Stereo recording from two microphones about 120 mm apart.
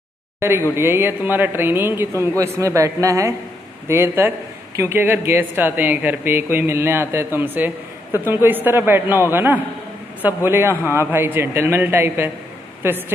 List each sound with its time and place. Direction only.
0.4 s speech: 20° right (ahead or behind)